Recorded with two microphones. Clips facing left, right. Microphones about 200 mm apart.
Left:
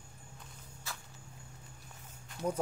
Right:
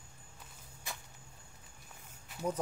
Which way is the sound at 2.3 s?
5° right (ahead or behind).